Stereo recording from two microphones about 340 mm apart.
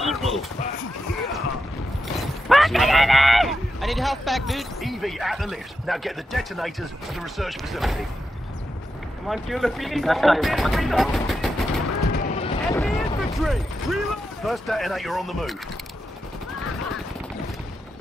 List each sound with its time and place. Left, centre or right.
0.0 s a sound: centre
2.1 s speech: centre
9.3 s speech: centre
12.0 s run: left
12.8 s speech: centre